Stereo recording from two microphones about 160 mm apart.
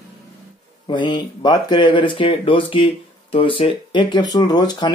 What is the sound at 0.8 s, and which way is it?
Speech, 30° left (ahead or behind).